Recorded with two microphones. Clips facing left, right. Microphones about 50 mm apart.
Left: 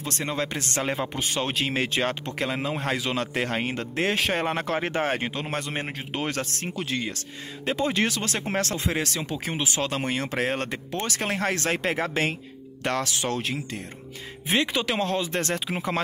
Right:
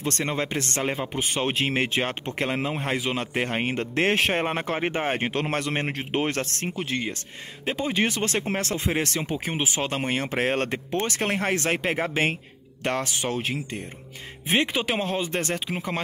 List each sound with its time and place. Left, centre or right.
0.0 s speech: right
1.4 s speech: right
2.3 s speech: right
2.7 s speech: centre
3.5 s speech: right
5.2 s speech: right
6.1 s speech: right
6.7 s speech: centre
8.1 s speech: right
9.2 s speech: right